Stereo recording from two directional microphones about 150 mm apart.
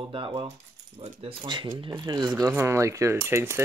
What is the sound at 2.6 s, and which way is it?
Speech, 20° right (ahead or behind).